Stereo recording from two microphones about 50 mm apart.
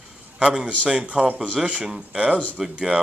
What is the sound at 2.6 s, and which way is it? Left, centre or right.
Speech, centre.